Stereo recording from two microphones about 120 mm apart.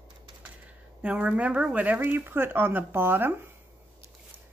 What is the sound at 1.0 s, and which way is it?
Speech, 10° right (ahead or behind).